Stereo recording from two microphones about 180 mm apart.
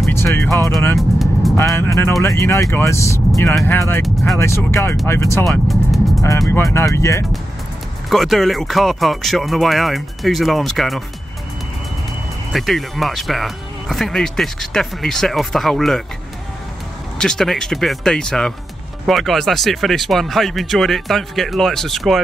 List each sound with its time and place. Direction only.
0.1 s speech: 15° left (ahead or behind)
0.9 s vehicle: centre (ahead or behind)
1.6 s speech: 15° left (ahead or behind)
4.0 s speech: centre (ahead or behind)
4.4 s speech: 15° left (ahead or behind)
5.5 s speech: centre (ahead or behind)
6.2 s speech: 15° left (ahead or behind)
8.1 s speech: centre (ahead or behind)
12.5 s speech: centre (ahead or behind)
17.2 s speech: 5° left (ahead or behind)